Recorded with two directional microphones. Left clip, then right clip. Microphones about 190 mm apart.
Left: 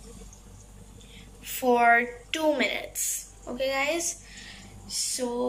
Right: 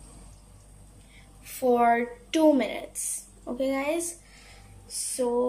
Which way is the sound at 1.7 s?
15° right (ahead or behind).